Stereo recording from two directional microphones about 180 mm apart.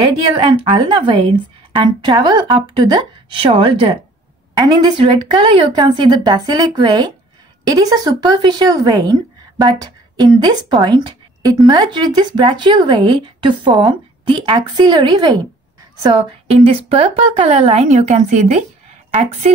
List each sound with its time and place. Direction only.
0.0 s a woman's voice: 25° right (ahead or behind)
16.4 s a woman's voice: 35° right (ahead or behind)